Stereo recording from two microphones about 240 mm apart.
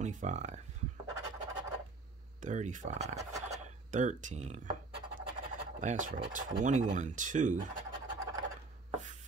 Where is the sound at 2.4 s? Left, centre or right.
Right.